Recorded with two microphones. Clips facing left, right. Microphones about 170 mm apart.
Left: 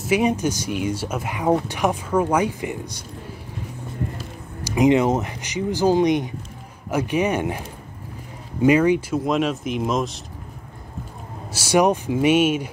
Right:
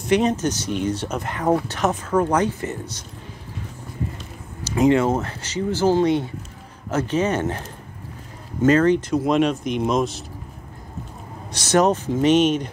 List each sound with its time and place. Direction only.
0.0 s speech: 10° left (ahead or behind)
4.2 s speech: 15° left (ahead or behind)
11.5 s speech: 10° left (ahead or behind)